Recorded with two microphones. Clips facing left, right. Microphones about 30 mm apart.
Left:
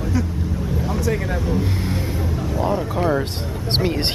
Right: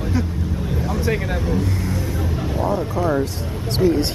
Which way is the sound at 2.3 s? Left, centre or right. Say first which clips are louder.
Even; centre.